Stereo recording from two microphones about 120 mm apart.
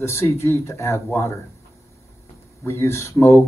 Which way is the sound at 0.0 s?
20° left (ahead or behind).